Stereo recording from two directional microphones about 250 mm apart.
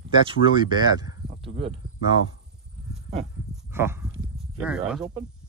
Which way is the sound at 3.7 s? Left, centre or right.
Centre.